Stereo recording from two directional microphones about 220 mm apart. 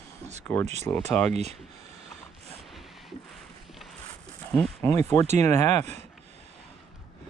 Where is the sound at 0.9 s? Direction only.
10° left (ahead or behind).